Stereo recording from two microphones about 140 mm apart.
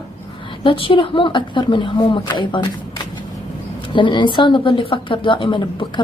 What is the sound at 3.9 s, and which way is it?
A woman's voice, 35° left (ahead or behind).